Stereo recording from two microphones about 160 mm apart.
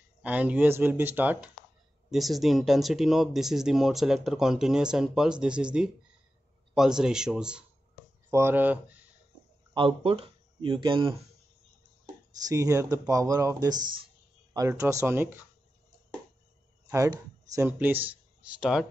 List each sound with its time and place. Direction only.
0.2 s speech: 10° right (ahead or behind)
8.3 s speech: 15° right (ahead or behind)
9.8 s speech: 35° right (ahead or behind)
12.4 s speech: 20° right (ahead or behind)
16.9 s speech: 20° right (ahead or behind)